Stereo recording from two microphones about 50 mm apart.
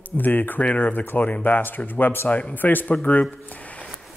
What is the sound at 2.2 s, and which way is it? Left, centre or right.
Speech, left.